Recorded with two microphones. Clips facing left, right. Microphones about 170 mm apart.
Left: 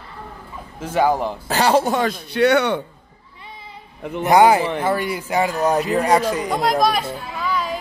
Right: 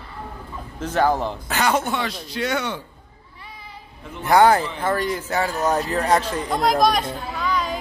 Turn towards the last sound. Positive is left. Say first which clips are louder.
# even
turn(degrees=0)  # may be behind; listen again after turning